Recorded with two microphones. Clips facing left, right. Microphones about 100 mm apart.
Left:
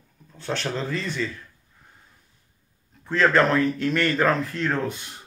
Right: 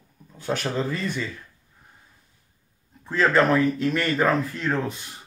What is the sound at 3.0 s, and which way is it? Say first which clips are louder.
Speech: left 1 dB; 10° right (ahead or behind).